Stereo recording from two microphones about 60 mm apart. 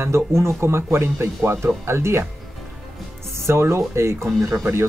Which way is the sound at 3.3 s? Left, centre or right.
Right.